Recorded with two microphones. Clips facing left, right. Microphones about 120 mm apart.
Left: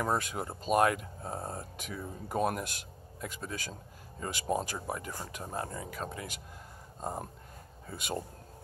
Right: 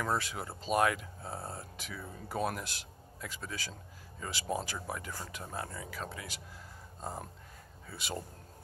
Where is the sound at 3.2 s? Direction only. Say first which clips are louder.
Left 3 dB; 30° left (ahead or behind).